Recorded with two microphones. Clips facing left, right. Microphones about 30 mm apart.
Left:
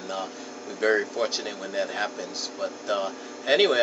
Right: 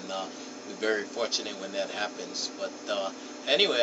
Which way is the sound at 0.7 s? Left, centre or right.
Left.